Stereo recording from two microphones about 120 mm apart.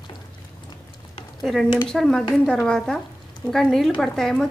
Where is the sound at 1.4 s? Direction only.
Centre (ahead or behind).